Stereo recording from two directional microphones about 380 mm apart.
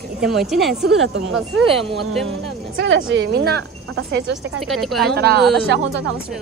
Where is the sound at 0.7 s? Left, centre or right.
Right.